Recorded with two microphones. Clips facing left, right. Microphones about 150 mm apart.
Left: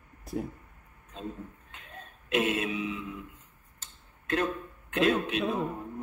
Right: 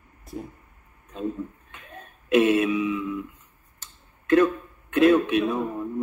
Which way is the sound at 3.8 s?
90° right.